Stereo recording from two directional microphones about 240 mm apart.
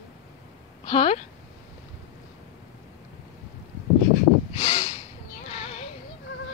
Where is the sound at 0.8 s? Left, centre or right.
Left.